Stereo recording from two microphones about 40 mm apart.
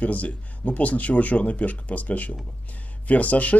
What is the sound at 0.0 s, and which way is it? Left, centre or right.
A man's voice, left.